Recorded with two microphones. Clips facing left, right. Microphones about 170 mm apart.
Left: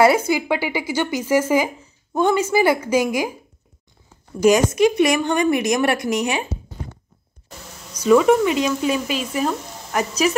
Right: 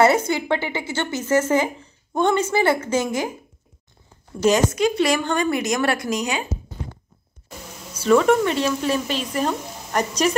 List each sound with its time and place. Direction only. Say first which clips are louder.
0.3 s a woman's voice: left 2 dB; 10° left (ahead or behind)
4.4 s a woman's voice: left 3 dB; 15° left (ahead or behind)
8.0 s a woman's voice: left 2 dB; 10° left (ahead or behind)